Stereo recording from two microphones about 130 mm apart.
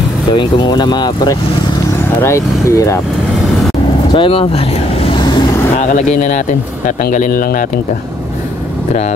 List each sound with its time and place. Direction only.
0.3 s speech: 35° left (ahead or behind)
2.2 s speech: 25° left (ahead or behind)
4.1 s speech: 40° left (ahead or behind)
5.0 s vehicle: 40° left (ahead or behind)
5.8 s speech: 85° left
7.1 s speech: 90° left